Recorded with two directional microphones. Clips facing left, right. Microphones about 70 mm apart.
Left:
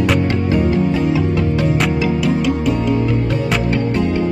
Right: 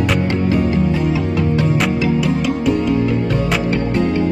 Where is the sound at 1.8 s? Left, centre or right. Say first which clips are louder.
Even; centre.